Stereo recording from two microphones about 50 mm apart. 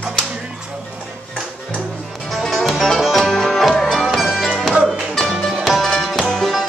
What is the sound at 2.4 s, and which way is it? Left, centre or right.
Music, centre.